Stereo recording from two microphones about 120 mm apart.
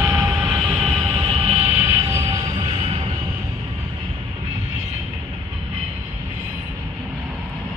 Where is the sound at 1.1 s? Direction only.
45° right (ahead or behind).